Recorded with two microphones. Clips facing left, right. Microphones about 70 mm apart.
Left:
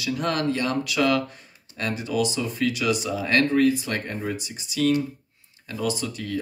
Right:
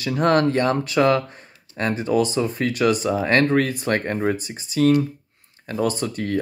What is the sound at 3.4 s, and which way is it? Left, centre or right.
Speech, right.